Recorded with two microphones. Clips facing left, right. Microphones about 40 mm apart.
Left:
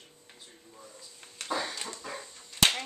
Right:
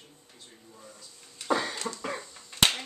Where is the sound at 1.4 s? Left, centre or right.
Right.